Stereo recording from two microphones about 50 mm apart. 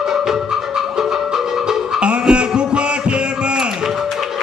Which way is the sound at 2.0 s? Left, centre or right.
Right.